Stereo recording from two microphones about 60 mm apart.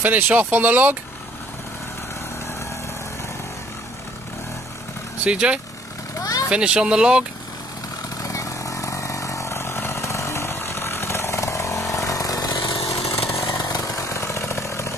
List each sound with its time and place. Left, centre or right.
0.0 s speech: right
5.2 s speech: centre
6.1 s vehicle: left
6.5 s speech: centre
8.2 s vehicle: left
11.9 s a sound: left
12.9 s chainsaw: left
13.7 s vehicle: left